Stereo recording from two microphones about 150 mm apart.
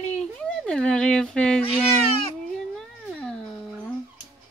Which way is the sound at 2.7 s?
5° left (ahead or behind).